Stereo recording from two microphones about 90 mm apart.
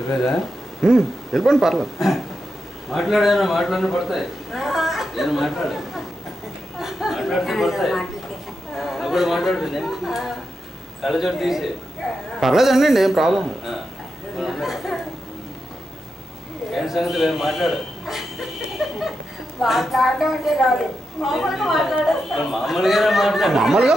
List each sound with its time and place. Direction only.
0.1 s a woman's voice: 5° left (ahead or behind)
16.7 s a man's voice: centre (ahead or behind)
18.8 s a sound: centre (ahead or behind)
19.6 s a woman's voice: centre (ahead or behind)